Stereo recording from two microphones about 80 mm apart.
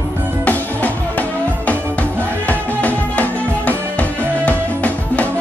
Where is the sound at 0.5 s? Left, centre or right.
Centre.